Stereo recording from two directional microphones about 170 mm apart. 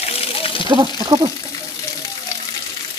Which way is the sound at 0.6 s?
25° right (ahead or behind).